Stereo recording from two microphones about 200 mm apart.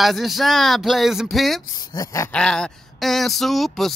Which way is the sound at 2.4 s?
5° left (ahead or behind).